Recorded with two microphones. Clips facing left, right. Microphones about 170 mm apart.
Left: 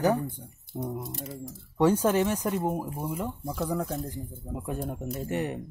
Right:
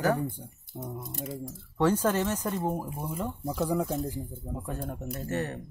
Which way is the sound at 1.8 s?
10° left (ahead or behind).